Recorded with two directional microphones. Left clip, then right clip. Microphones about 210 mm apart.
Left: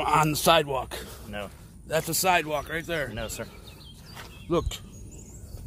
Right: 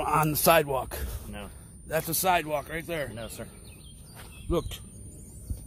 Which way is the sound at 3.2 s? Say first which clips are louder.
Left 5 dB; 40° left (ahead or behind).